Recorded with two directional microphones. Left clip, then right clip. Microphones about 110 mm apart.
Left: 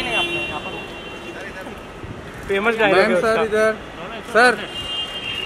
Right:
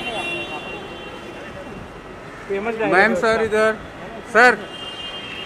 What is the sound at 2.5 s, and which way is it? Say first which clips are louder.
Speech: left 5 dB; 40° left (ahead or behind).